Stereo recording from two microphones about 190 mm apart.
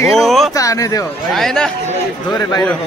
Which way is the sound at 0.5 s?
15° left (ahead or behind).